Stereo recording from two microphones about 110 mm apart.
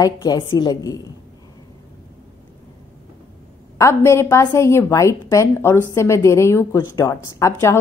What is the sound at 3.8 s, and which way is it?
A woman's voice, 25° left (ahead or behind).